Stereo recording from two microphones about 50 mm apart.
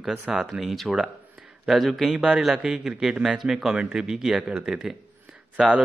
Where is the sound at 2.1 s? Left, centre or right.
Centre.